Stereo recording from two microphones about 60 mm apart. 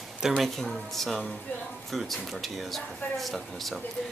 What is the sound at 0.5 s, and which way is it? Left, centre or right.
Speech, centre.